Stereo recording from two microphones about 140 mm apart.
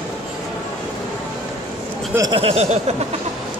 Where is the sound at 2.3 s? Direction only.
45° right (ahead or behind).